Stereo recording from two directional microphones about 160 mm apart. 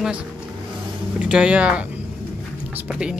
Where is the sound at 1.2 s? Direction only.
5° right (ahead or behind).